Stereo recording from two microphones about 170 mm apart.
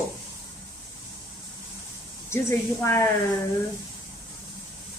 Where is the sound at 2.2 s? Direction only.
15° left (ahead or behind).